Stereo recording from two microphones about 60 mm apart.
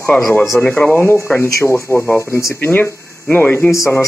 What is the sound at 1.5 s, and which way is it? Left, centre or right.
Speech, left.